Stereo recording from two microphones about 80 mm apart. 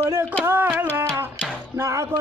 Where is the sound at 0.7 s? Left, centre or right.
Right.